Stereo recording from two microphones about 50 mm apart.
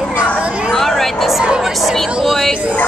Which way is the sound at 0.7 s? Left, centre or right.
Centre.